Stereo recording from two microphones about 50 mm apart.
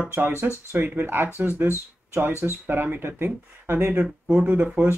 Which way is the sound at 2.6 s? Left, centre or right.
Right.